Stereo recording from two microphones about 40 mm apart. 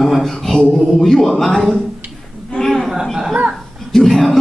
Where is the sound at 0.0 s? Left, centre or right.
Centre.